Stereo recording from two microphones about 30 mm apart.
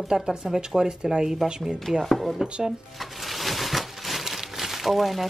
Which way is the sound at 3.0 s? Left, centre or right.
Centre.